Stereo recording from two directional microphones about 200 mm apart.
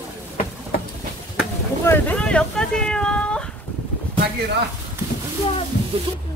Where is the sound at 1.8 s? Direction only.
10° left (ahead or behind).